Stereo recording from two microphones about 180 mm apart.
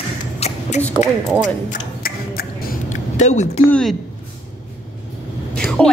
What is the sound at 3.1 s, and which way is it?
Speech, 40° left (ahead or behind).